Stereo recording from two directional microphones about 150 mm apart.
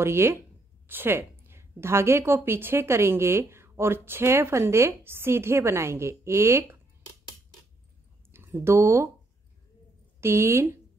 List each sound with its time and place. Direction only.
0.0 s a woman's voice: 15° right (ahead or behind)
8.3 s speech: 15° right (ahead or behind)
10.2 s a woman's voice: 15° right (ahead or behind)